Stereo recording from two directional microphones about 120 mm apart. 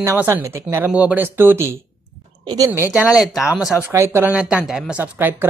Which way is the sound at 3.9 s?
20° right (ahead or behind).